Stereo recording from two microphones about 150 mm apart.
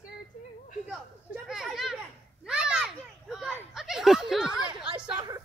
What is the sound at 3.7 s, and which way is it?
Snicker, 5° right (ahead or behind).